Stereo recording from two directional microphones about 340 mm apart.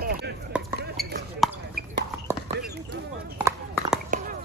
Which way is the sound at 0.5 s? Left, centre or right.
Centre.